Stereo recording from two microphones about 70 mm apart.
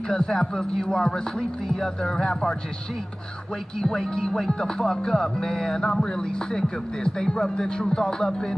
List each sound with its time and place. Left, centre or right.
0.1 s speech: centre
3.8 s speech: centre